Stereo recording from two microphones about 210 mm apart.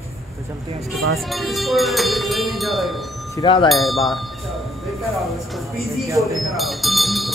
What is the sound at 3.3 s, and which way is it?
Speech, 25° left (ahead or behind).